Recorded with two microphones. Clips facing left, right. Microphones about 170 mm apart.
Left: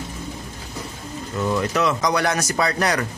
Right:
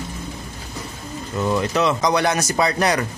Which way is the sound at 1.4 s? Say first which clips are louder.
Right 1 dB; 25° right (ahead or behind).